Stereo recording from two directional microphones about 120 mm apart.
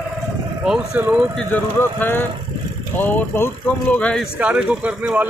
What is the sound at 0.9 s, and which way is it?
Speech, 15° right (ahead or behind).